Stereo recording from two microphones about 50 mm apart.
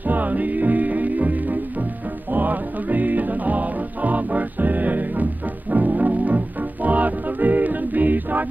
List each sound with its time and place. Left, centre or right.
0.0 s music: right